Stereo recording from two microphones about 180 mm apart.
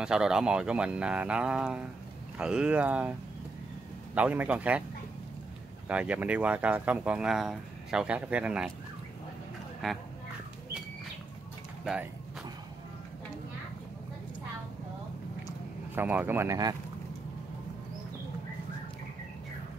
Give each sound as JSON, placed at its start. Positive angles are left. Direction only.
{"t": 0.0, "sound": "speech", "side_deg": -5}
{"t": 5.9, "sound": "speech", "side_deg": -5}
{"t": 11.8, "sound": "speech", "side_deg": -5}
{"t": 15.9, "sound": "speech", "side_deg": -10}